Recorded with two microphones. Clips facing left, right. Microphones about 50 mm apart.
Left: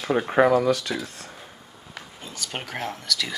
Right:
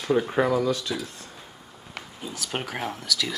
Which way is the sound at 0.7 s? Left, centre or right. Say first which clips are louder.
Left 3 dB; left.